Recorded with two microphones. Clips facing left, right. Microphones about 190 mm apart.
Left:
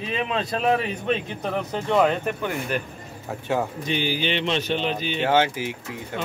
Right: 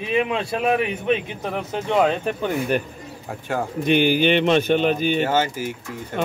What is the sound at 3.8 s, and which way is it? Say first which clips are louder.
Speech: right 8 dB; 60° right (ahead or behind).